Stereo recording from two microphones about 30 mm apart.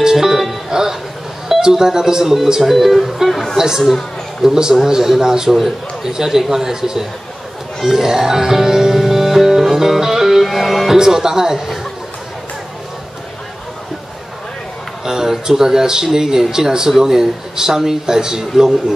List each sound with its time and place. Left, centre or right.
0.0 s music: centre
1.6 s speech: centre
2.6 s speech: centre
3.5 s speech: centre
7.8 s music: centre
10.4 s music: centre
10.9 s speech: centre
15.0 s speech: centre